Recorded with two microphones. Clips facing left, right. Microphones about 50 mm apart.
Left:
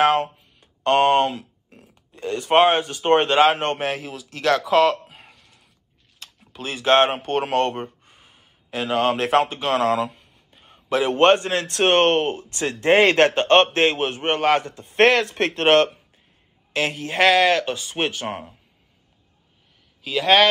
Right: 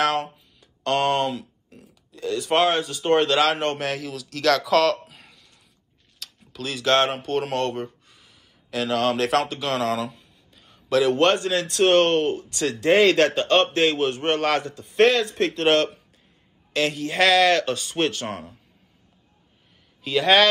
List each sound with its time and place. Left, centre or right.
0.0 s speech: left
5.3 s a sound: left
7.2 s speech: left; by 14.6 s centre
14.6 s speech: left
16.7 s speech: left
20.0 s speech: centre